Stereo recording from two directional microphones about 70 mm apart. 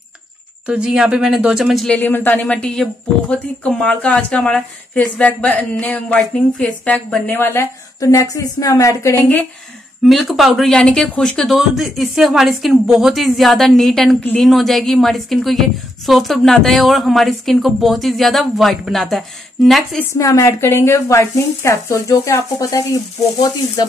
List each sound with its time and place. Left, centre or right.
0.7 s speech: centre
2.0 s speech: left
7.2 s speech: left
8.0 s speech: left
10.0 s speech: centre
11.5 s speech: centre
20.2 s speech: left